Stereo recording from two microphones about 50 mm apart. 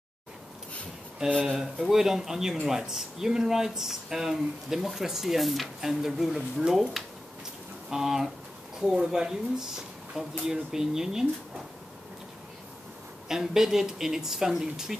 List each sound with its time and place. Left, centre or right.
1.6 s speech: centre
7.9 s speech: centre
13.3 s speech: centre